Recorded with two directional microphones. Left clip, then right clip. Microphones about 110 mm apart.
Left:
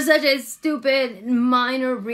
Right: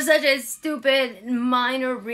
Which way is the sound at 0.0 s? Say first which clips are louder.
Left 1 dB; 30° left (ahead or behind).